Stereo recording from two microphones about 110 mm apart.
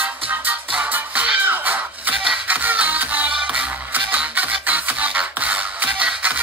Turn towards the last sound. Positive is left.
turn(degrees=-15)  # may be behind; listen again after turning